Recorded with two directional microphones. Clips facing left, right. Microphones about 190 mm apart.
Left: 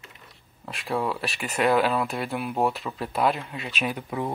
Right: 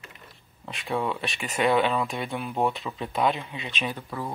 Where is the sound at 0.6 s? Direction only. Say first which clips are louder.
Left 1 dB; centre (ahead or behind); by 4.3 s 20° left (ahead or behind).